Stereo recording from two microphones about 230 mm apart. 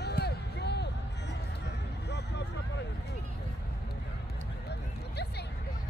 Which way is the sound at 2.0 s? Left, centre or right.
Left.